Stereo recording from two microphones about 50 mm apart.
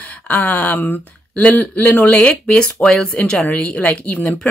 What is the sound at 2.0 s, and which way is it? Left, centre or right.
A man's voice, left.